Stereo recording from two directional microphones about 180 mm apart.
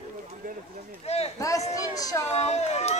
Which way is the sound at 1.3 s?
20° left (ahead or behind).